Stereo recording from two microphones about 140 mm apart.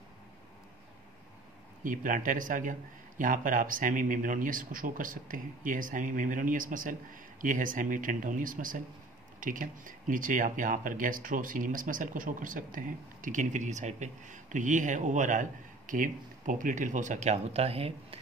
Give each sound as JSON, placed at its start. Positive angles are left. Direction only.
{"t": 1.8, "sound": "a man's voice", "side_deg": -70}